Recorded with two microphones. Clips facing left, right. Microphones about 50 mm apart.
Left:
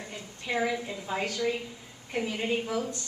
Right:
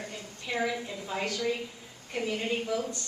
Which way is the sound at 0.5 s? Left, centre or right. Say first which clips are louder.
Left 2 dB; centre.